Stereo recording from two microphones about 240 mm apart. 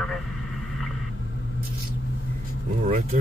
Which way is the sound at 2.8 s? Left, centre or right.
Right.